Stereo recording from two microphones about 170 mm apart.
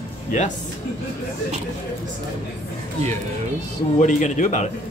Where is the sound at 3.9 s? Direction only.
45° left (ahead or behind).